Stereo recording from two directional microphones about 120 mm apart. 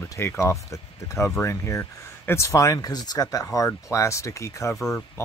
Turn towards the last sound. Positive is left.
turn(degrees=25)  # may be behind; listen again after turning